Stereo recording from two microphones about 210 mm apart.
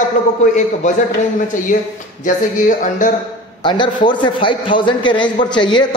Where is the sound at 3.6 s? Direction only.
20° left (ahead or behind).